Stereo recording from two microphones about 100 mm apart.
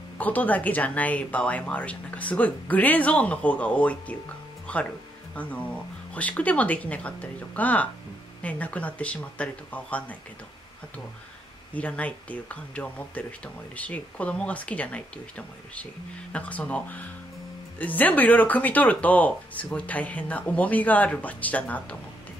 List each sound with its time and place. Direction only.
0.2 s speech: 15° left (ahead or behind)
4.7 s music: 15° left (ahead or behind)
5.3 s speech: 15° left (ahead or behind)
11.7 s speech: 15° left (ahead or behind)